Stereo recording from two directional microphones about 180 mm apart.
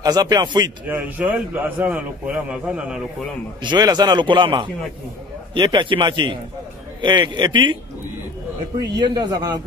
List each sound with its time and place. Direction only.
0.0 s a man's voice: 20° right (ahead or behind)
0.8 s a man's voice: 10° right (ahead or behind)
3.6 s a man's voice: 25° right (ahead or behind)
8.7 s a man's voice: 20° right (ahead or behind)